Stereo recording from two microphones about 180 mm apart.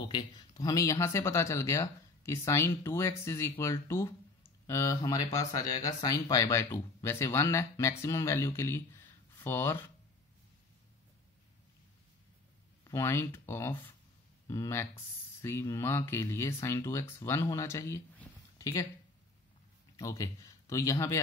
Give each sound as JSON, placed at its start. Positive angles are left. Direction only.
{"t": 0.0, "sound": "speech", "side_deg": 25}
{"t": 12.8, "sound": "speech", "side_deg": 15}
{"t": 20.0, "sound": "speech", "side_deg": 20}